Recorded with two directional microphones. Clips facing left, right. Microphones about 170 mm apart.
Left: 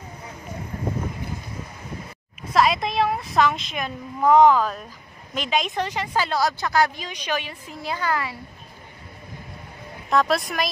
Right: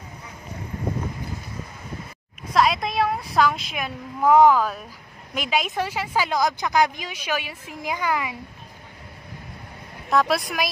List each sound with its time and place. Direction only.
2.5 s a woman's voice: centre (ahead or behind)
10.0 s speech: 5° right (ahead or behind)